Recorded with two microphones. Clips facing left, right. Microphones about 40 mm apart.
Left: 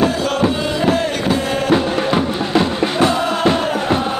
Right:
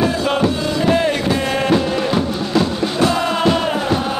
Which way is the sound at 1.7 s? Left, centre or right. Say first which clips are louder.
Left 3 dB; left.